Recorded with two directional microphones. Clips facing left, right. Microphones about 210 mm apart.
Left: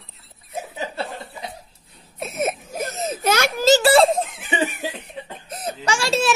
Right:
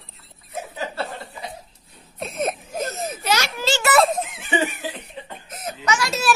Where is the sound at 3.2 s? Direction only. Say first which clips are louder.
Left 7 dB; 50° left (ahead or behind); by 4.7 s 30° left (ahead or behind).